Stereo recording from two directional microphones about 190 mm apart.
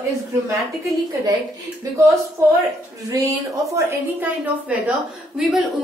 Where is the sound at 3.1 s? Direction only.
15° right (ahead or behind).